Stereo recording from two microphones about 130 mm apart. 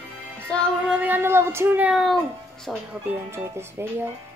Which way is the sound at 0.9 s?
15° right (ahead or behind).